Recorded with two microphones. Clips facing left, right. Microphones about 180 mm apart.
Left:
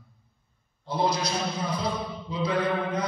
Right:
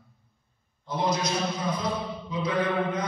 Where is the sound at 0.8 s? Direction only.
30° left (ahead or behind).